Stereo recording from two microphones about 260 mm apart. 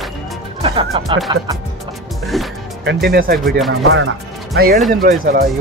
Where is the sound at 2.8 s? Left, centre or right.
Right.